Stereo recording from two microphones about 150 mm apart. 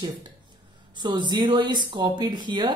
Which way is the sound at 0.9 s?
30° right (ahead or behind).